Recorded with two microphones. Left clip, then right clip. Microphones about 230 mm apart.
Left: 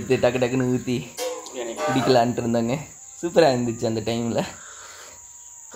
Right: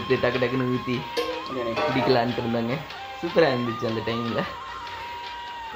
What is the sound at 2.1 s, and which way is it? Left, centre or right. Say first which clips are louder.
Speech: left 3 dB; centre.